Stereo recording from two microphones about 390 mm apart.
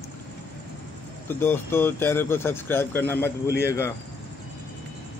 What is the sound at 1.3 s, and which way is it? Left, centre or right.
Speech, centre.